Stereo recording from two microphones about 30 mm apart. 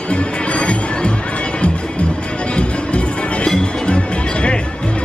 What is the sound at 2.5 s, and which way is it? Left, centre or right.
Music, left.